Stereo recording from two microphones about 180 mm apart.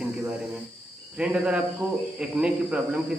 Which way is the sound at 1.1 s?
5° right (ahead or behind).